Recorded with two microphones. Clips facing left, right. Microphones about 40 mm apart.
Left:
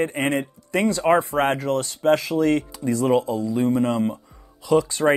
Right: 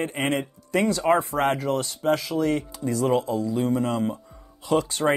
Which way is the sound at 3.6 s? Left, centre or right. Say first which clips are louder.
Left 6 dB; left.